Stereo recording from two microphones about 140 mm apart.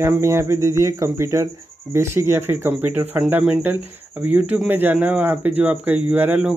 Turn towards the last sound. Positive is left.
turn(degrees=-10)  # may be behind; listen again after turning